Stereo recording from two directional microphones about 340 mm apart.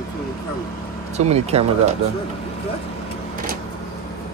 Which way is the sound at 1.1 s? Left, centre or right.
Centre.